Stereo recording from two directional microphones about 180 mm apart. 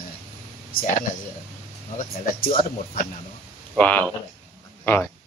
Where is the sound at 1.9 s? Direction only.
50° left (ahead or behind).